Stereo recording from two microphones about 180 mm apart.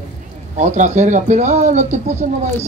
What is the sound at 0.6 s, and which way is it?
Speech, 40° right (ahead or behind).